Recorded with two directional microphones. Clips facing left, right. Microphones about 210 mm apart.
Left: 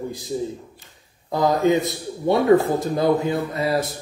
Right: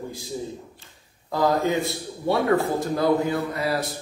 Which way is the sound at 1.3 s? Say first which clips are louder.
Left 3 dB; 20° left (ahead or behind).